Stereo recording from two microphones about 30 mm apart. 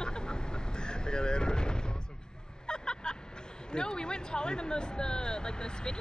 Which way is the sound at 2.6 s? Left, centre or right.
Left.